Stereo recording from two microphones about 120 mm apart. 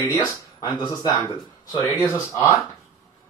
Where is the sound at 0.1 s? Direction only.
35° left (ahead or behind).